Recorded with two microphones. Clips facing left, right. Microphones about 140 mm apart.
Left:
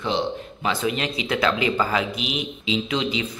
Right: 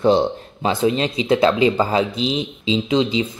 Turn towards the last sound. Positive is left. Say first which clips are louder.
# right 6 dB
turn(degrees=-30)  # may be behind; listen again after turning